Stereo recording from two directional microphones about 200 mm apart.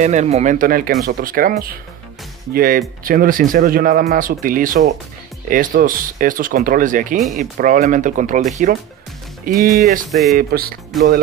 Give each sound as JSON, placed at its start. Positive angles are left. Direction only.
{"t": 0.0, "sound": "speech", "side_deg": -35}